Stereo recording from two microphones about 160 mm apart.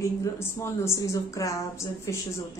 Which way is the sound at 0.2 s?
15° left (ahead or behind).